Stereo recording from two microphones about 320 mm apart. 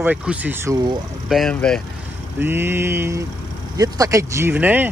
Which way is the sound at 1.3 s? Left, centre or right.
Centre.